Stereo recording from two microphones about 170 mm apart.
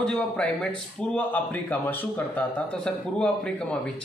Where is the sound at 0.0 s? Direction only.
5° left (ahead or behind).